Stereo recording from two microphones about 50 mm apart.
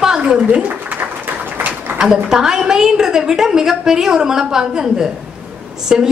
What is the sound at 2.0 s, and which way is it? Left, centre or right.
Speech, centre.